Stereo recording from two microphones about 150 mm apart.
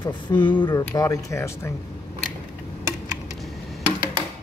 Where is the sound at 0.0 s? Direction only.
30° left (ahead or behind).